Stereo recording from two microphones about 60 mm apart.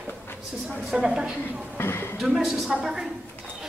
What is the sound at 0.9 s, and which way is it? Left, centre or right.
Speech, centre.